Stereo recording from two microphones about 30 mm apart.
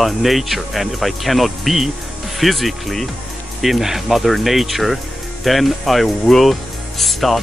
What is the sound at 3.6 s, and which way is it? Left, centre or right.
Speech, centre.